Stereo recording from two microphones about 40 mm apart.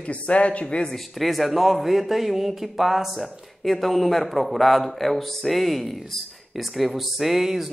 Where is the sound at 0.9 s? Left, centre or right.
Centre.